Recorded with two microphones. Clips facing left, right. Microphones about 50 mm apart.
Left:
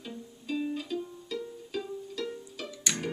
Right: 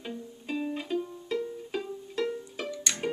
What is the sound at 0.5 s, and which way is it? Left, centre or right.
Music, right.